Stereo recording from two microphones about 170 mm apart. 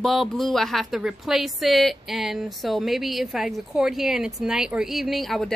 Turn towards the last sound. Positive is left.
turn(degrees=0)  # may be behind; listen again after turning